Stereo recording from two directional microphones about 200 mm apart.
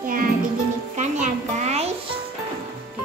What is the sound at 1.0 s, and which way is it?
Music, 35° right (ahead or behind).